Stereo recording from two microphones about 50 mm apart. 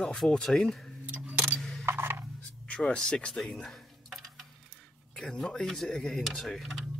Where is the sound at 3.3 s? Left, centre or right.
Centre.